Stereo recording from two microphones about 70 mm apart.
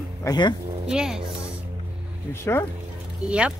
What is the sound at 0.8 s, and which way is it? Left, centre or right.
Speech, centre.